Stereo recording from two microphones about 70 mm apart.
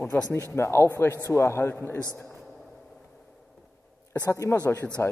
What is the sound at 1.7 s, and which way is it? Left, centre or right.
Speech, left.